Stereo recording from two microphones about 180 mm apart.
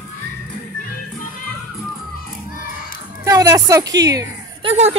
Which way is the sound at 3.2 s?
20° right (ahead or behind).